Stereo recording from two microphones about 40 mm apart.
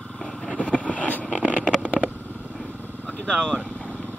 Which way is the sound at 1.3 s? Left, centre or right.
Right.